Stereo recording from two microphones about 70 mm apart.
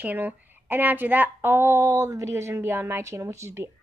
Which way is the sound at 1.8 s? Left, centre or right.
Right.